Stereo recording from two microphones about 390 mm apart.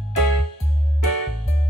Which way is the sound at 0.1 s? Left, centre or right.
Right.